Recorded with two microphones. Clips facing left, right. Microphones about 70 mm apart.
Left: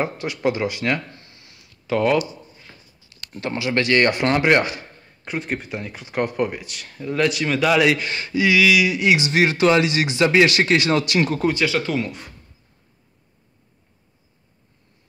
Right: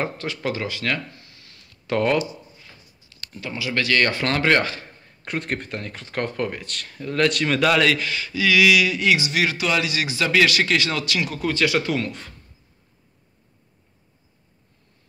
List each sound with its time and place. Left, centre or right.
0.0 s speech: centre
1.1 s a sound: left
1.9 s speech: centre
3.3 s speech: left; by 4.8 s centre
5.2 s speech: centre
7.8 s speech: centre
8.5 s speech: centre; by 11.4 s left
11.6 s speech: centre
12.0 s speech: centre